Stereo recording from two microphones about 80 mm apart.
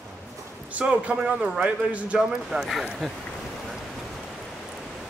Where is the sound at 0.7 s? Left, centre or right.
Centre.